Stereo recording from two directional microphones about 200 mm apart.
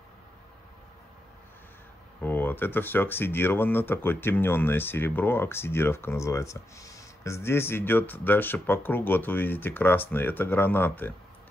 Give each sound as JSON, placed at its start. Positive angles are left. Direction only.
{"t": 2.2, "sound": "speech", "side_deg": 10}